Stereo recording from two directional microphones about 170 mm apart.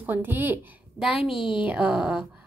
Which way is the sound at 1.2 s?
30° left (ahead or behind).